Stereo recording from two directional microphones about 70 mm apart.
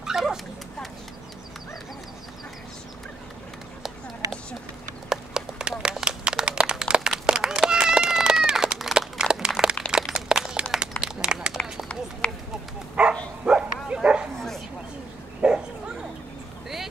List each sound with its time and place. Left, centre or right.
0.0 s dog: centre
5.1 s a sound: centre
12.2 s a sound: centre
13.0 s dog: centre
13.5 s bow-wow: centre
15.4 s bow-wow: centre